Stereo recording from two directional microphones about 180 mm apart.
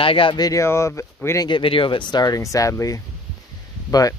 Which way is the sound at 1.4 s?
30° left (ahead or behind).